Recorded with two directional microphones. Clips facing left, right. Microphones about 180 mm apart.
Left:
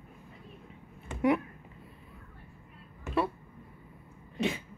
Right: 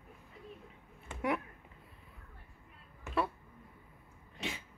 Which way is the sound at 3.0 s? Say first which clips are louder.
Left 4 dB; centre (ahead or behind).